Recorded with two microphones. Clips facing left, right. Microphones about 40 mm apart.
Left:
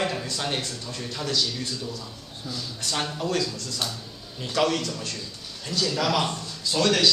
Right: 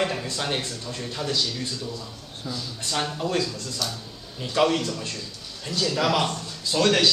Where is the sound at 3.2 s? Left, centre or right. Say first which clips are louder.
Even; centre.